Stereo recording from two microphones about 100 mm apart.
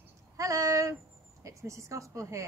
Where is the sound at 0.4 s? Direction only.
35° right (ahead or behind).